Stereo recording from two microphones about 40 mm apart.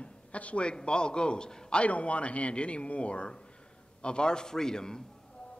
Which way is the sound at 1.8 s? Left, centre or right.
Left.